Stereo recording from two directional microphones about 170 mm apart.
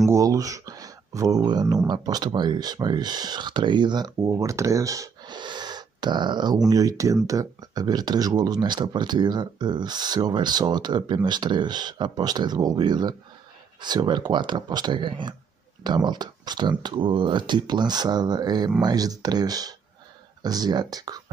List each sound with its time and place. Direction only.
0.1 s speech: 20° right (ahead or behind)